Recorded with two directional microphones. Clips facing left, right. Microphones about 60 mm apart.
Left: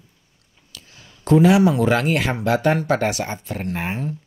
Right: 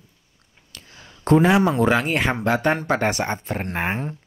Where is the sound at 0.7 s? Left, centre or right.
Right.